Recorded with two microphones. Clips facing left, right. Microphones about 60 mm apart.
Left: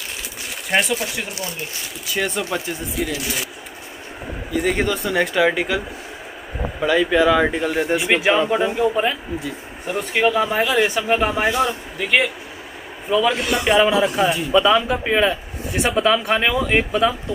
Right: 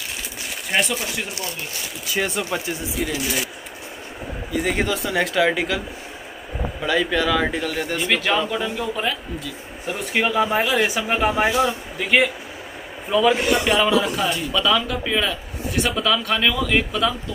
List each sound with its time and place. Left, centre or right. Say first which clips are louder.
0.7 s speech: left 3 dB; centre
4.5 s speech: left 2 dB; centre
8.1 s speech: left 3 dB; left
9.8 s speech: left 3 dB; centre
14.5 s speech: left 6 dB; left
15.7 s speech: left 2 dB; centre
16.0 s speech: left 4 dB; left